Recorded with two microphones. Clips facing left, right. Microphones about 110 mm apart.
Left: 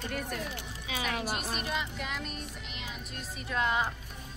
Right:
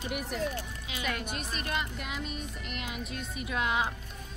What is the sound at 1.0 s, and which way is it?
A child's voice, 5° left (ahead or behind).